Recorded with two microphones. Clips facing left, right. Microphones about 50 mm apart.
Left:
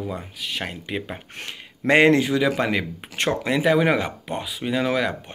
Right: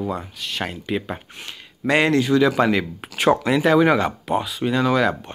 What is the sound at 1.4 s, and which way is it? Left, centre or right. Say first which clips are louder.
Speech: left 1 dB; left.